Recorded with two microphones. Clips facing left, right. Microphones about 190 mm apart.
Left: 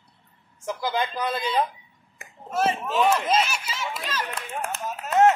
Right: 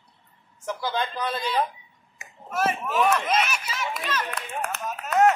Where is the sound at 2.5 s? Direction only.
30° left (ahead or behind).